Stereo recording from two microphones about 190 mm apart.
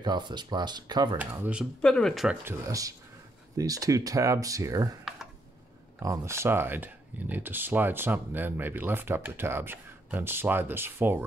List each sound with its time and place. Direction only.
0.0 s speech: 25° right (ahead or behind)
1.1 s speech: 10° right (ahead or behind)
1.8 s speech: 5° left (ahead or behind)
2.4 s speech: 15° right (ahead or behind)
5.9 s speech: 15° right (ahead or behind)